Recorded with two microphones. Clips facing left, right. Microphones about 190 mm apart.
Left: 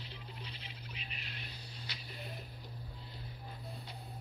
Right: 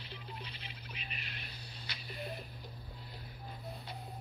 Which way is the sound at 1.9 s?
60° right (ahead or behind).